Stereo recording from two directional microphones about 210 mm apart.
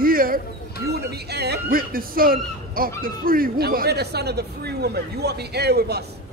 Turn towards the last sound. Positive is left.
turn(degrees=-50)  # may be behind; listen again after turning